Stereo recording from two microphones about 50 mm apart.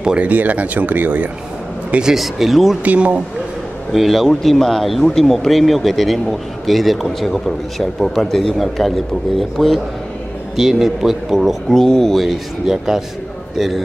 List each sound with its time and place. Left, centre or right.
0.2 s speech: right
2.1 s speech: centre
2.8 s speech: right
3.9 s speech: centre
11.7 s speech: centre